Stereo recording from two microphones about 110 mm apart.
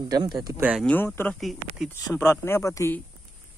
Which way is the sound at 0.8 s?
15° left (ahead or behind).